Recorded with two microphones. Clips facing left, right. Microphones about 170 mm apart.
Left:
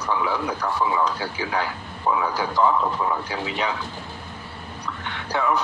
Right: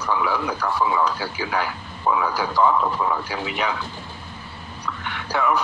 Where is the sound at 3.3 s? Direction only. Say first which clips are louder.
Right 1 dB; 25° left (ahead or behind).